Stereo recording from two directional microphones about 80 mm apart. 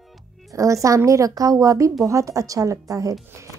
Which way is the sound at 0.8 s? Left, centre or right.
Right.